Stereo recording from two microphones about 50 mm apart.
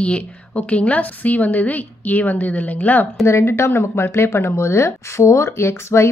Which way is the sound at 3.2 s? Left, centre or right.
Left.